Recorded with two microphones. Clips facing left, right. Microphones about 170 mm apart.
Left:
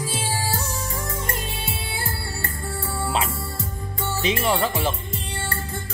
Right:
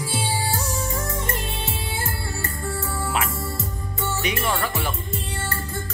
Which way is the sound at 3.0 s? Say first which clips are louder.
Left 2 dB; 25° left (ahead or behind).